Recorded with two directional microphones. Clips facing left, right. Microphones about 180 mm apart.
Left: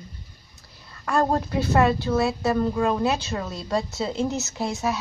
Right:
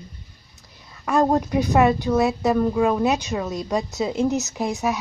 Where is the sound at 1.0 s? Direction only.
15° right (ahead or behind).